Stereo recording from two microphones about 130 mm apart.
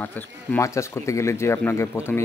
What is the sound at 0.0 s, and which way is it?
Speech, 15° left (ahead or behind).